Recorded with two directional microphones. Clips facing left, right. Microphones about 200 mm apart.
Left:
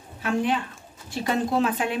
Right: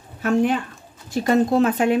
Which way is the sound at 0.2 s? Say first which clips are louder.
Right 5 dB; 45° right (ahead or behind).